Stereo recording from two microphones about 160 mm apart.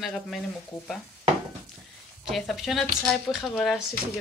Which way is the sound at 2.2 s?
Centre (ahead or behind).